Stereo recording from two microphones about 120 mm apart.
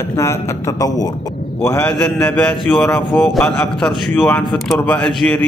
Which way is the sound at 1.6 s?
15° left (ahead or behind).